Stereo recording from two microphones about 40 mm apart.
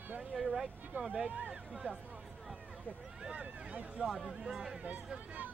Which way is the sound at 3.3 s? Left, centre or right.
Right.